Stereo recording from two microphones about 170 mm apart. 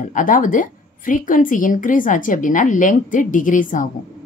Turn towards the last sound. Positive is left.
turn(degrees=50)  # may be behind; listen again after turning